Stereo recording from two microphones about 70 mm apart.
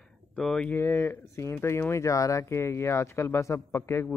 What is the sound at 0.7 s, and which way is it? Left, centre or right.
Speech, left.